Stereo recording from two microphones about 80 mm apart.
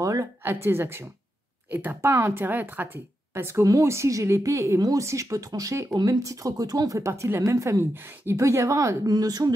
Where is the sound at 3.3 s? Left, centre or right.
Right.